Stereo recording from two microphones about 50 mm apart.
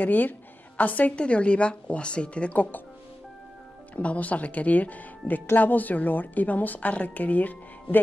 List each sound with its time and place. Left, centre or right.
0.0 s a woman's voice: left
3.9 s a woman's voice: left